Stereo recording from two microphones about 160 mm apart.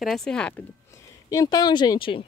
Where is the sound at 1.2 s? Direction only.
20° left (ahead or behind).